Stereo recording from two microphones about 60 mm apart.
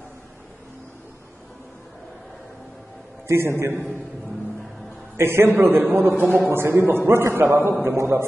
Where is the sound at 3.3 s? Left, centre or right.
Right.